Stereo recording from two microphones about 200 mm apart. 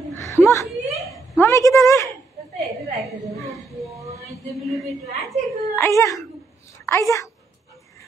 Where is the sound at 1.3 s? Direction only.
15° left (ahead or behind).